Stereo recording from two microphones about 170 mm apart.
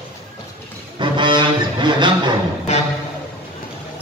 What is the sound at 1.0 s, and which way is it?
Music, 30° right (ahead or behind).